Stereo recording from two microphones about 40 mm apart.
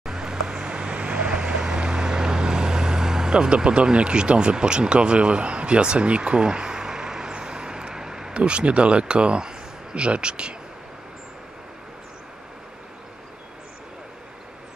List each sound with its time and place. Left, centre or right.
0.0 s vehicle: centre
8.3 s speech: right